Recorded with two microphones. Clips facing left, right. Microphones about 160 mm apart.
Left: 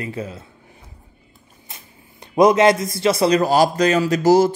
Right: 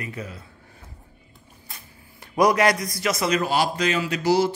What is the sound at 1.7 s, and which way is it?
Speech, 20° left (ahead or behind).